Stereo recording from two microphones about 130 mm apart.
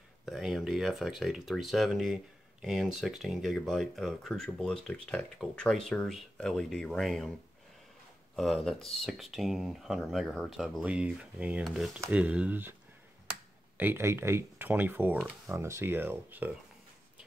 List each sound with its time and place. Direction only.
0.2 s speech: 5° right (ahead or behind)
8.4 s speech: centre (ahead or behind); by 12.7 s 15° right (ahead or behind)
13.7 s speech: 20° right (ahead or behind)